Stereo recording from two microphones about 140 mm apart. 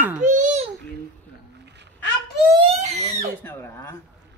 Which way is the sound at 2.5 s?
45° right (ahead or behind).